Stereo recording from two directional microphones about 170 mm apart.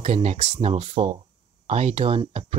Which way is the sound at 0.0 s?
40° right (ahead or behind).